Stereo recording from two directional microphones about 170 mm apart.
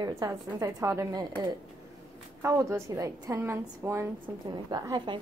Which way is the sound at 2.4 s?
15° right (ahead or behind).